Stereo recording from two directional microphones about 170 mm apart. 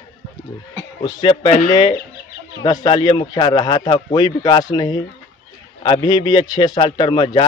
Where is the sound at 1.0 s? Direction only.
25° left (ahead or behind).